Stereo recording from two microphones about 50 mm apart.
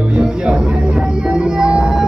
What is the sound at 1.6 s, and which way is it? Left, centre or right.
Music, centre.